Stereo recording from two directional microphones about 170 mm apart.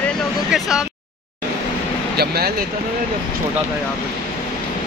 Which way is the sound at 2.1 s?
70° right (ahead or behind).